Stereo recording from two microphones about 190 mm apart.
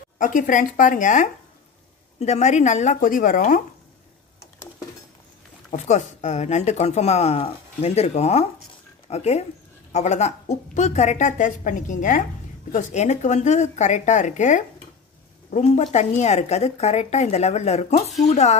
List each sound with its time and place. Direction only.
0.2 s a woman's voice: 45° left (ahead or behind)
5.7 s speech: 40° left (ahead or behind)